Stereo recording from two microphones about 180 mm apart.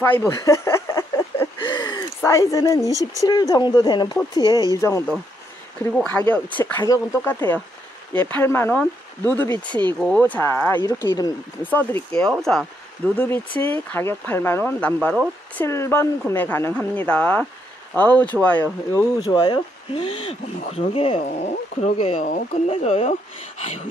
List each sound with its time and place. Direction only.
0.0 s a sound: 15° left (ahead or behind)
1.6 s gasp: 25° left (ahead or behind)
3.0 s speech: 20° left (ahead or behind)
11.6 s speech: 10° left (ahead or behind); by 23.1 s 35° left (ahead or behind)